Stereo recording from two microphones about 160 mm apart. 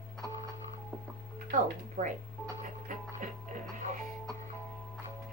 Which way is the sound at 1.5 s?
55° right (ahead or behind).